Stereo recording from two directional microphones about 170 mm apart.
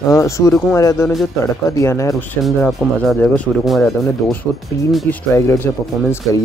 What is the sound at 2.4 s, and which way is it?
Speech, centre (ahead or behind).